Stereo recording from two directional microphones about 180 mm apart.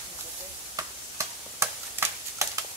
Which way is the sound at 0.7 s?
15° right (ahead or behind).